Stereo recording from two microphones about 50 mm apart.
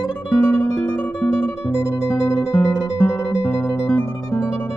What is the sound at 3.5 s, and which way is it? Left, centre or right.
Music, left.